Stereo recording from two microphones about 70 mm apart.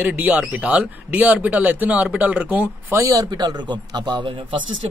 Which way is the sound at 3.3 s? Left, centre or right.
Right.